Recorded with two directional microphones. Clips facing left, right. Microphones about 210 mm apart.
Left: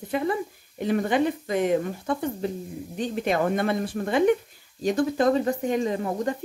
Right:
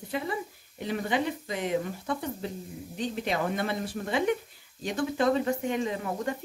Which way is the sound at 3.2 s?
50° left (ahead or behind).